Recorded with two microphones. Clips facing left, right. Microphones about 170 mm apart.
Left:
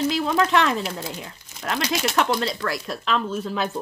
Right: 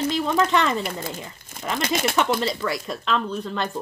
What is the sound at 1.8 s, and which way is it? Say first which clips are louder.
Speech: right 1 dB; 50° right (ahead or behind).